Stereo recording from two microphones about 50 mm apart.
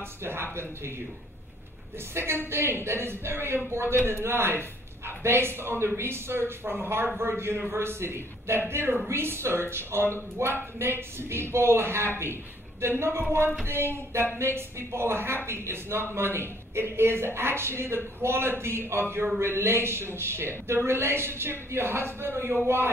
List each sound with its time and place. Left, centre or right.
0.2 s speech: right
2.1 s speech: right